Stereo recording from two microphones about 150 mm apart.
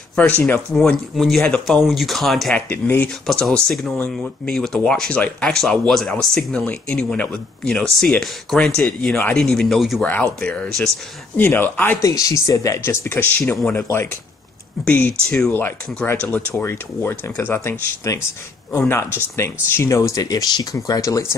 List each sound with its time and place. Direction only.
0.1 s speech: 10° left (ahead or behind)
2.7 s speech: 10° left (ahead or behind)